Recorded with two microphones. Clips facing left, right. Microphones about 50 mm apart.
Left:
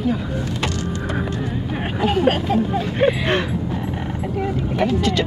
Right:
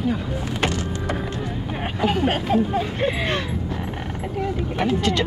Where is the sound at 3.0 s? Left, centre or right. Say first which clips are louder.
Left 8 dB; left.